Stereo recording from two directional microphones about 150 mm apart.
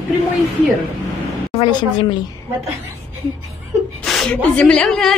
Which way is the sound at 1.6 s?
30° left (ahead or behind).